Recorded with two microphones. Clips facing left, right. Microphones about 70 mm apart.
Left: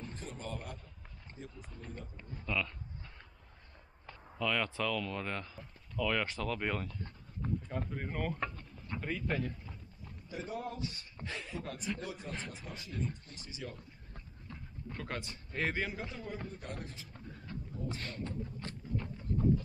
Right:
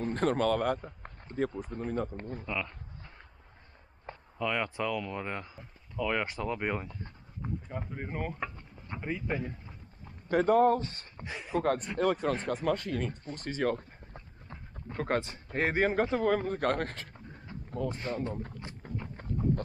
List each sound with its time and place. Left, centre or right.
0.0 s speech: right
2.4 s speech: right
8.8 s dog: centre
9.1 s speech: centre
10.2 s speech: right
11.1 s speech: centre
11.5 s speech: right
14.1 s speech: right
17.6 s a sound: right
17.9 s speech: centre
18.6 s boat: centre
19.2 s a sound: right